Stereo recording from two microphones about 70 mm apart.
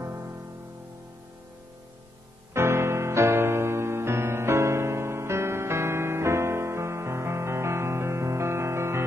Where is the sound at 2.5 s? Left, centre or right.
Right.